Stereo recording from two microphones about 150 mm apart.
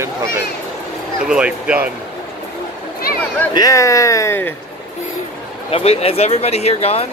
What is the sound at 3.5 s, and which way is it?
Speech, 25° left (ahead or behind).